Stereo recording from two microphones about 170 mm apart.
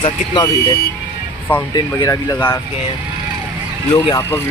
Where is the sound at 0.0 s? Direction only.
25° left (ahead or behind).